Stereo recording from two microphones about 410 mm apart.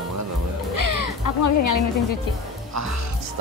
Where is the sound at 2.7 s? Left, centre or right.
Right.